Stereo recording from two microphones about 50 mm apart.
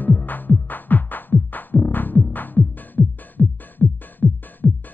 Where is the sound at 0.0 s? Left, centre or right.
Left.